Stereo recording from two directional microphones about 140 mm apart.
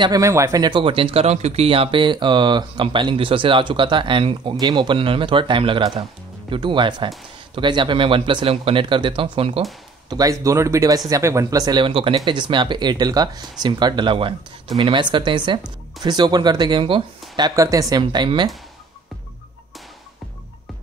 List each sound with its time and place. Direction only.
0.0 s speech: 25° right (ahead or behind); by 9.6 s 40° right (ahead or behind)
10.0 s speech: 25° right (ahead or behind)